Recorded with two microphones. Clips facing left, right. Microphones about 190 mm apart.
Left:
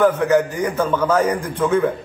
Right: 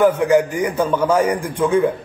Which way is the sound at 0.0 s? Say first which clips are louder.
Right 1 dB; 10° right (ahead or behind).